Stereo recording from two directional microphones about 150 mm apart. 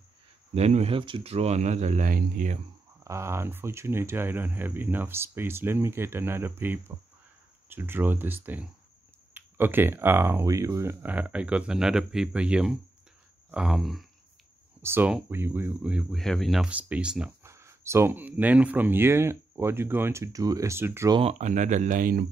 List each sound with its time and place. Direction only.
0.6 s speech: 45° right (ahead or behind); by 2.6 s 60° right (ahead or behind)
3.0 s speech: 20° right (ahead or behind); by 14.0 s centre (ahead or behind)
14.8 s speech: 15° right (ahead or behind)
17.4 s speech: 20° right (ahead or behind)
21.2 s speech: 50° right (ahead or behind); by 22.2 s 65° right (ahead or behind)